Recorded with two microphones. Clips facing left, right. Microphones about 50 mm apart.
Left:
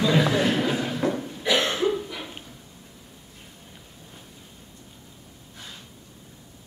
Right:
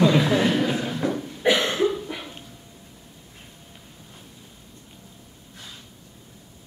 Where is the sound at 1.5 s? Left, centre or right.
Right.